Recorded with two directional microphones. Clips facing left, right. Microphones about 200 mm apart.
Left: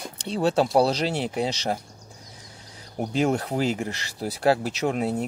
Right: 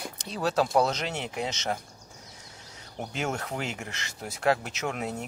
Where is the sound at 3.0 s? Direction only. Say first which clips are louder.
Left 9 dB; 35° left (ahead or behind).